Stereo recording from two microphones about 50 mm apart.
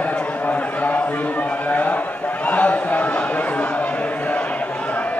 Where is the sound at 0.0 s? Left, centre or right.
Left.